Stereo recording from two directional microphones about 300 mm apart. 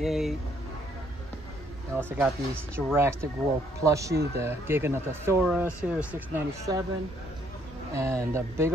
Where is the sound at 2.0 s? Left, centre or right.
Centre.